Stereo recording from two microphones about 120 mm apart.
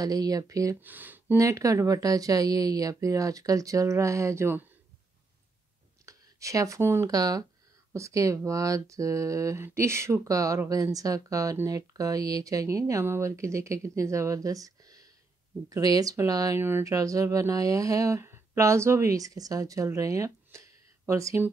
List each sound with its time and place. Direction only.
0.0 s speech: 30° right (ahead or behind)
0.7 s speech: 15° right (ahead or behind)
1.4 s speech: 25° right (ahead or behind)
6.0 s speech: 25° right (ahead or behind)